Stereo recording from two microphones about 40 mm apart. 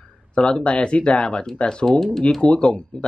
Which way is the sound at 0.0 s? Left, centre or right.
Left.